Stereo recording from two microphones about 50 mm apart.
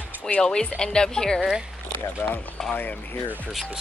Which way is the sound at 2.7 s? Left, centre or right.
Left.